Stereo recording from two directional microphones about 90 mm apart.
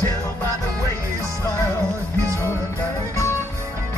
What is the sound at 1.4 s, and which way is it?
Music, 30° left (ahead or behind).